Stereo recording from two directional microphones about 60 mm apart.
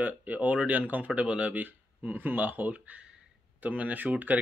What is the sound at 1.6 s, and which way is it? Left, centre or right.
Speech, right.